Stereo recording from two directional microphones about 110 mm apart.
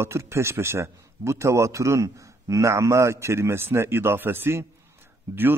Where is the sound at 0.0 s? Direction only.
25° right (ahead or behind).